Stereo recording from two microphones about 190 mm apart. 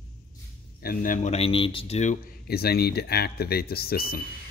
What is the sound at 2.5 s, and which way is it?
Speech, 55° left (ahead or behind).